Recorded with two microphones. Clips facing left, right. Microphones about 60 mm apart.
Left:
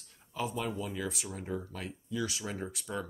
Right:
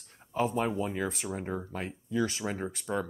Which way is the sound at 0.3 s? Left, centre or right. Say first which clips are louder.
Right 6 dB; right.